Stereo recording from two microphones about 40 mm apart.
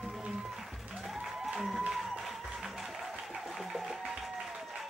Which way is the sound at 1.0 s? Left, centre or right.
Centre.